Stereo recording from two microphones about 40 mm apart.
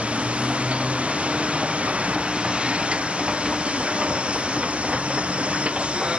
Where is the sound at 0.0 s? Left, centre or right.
Right.